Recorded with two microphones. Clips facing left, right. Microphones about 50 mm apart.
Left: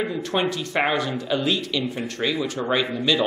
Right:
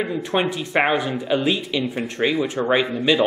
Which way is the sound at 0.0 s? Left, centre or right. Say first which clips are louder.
Right 2 dB; centre.